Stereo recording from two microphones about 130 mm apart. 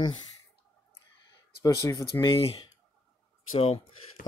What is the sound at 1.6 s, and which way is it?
Speech, 25° left (ahead or behind).